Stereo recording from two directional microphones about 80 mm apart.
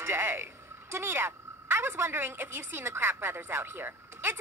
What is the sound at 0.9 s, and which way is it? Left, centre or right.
A woman's voice, right.